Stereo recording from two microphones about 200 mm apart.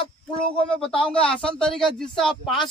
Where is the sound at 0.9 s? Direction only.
5° left (ahead or behind).